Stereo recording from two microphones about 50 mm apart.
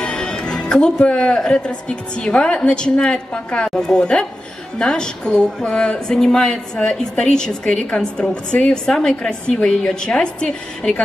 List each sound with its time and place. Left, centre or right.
0.0 s speech: centre